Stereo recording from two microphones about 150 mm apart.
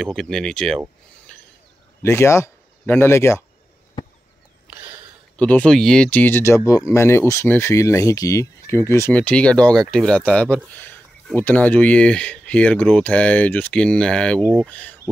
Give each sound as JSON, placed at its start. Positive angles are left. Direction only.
{"t": 0.0, "sound": "speech", "side_deg": 5}
{"t": 2.0, "sound": "speech", "side_deg": 20}
{"t": 5.4, "sound": "speech", "side_deg": 10}
{"t": 14.4, "sound": "speech", "side_deg": -10}
{"t": 14.7, "sound": "speech", "side_deg": 10}